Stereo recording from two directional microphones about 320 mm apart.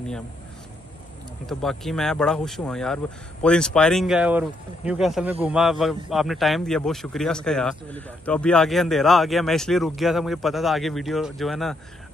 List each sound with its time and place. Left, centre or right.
1.4 s speech: centre